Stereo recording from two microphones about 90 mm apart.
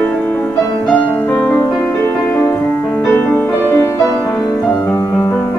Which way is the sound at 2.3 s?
20° left (ahead or behind).